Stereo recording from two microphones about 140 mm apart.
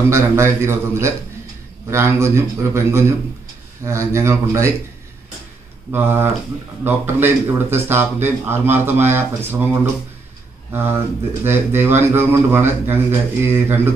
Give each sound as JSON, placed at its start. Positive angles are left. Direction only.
{"t": 0.1, "sound": "a man's voice", "side_deg": -20}
{"t": 5.9, "sound": "speech", "side_deg": -15}
{"t": 10.7, "sound": "speech", "side_deg": -15}